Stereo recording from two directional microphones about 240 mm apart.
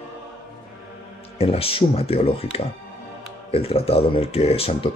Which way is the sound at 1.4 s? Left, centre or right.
Left.